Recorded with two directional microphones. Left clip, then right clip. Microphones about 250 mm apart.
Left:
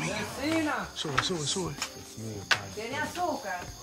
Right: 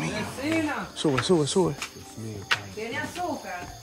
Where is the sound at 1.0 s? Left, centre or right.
Centre.